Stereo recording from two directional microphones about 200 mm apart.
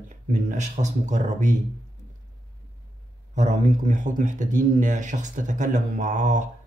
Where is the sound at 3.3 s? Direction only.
35° right (ahead or behind).